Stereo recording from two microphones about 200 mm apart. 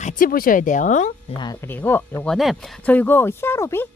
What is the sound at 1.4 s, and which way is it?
Speech, 15° left (ahead or behind).